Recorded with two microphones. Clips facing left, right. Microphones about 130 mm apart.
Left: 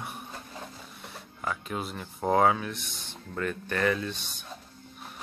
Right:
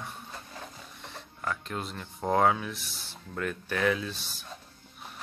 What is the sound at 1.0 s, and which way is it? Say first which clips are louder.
Speech: left 1 dB; 5° left (ahead or behind).